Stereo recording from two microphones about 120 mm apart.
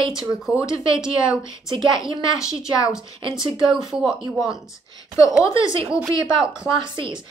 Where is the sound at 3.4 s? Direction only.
45° right (ahead or behind).